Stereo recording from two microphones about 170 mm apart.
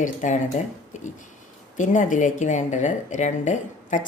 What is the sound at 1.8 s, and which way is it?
Speech, 50° left (ahead or behind).